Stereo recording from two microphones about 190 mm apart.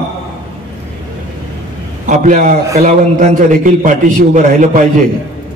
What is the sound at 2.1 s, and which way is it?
A man's voice, 40° right (ahead or behind).